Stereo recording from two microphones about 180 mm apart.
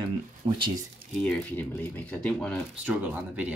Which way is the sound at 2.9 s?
10° right (ahead or behind).